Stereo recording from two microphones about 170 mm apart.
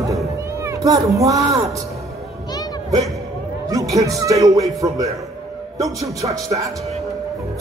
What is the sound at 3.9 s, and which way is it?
A man's voice, 20° right (ahead or behind).